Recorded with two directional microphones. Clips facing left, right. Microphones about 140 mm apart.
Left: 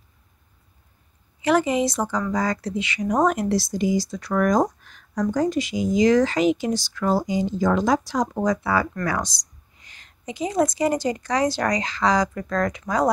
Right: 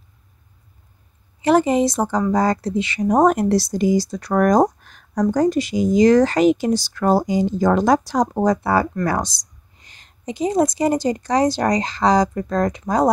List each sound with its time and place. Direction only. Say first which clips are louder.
1.4 s speech: right 4 dB; 35° right (ahead or behind)